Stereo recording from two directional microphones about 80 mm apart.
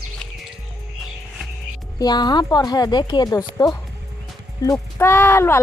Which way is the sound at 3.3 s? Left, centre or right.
Left.